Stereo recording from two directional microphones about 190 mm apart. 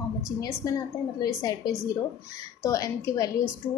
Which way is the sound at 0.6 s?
25° left (ahead or behind).